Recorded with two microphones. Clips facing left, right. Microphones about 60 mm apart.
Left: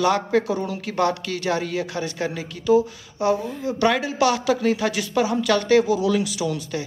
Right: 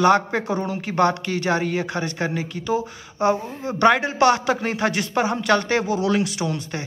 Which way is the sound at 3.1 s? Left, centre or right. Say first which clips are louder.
Right 1 dB; right.